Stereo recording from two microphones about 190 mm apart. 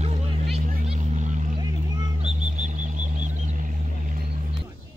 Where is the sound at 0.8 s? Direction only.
40° right (ahead or behind).